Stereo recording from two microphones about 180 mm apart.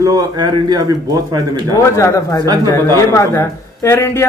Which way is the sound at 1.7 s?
15° left (ahead or behind).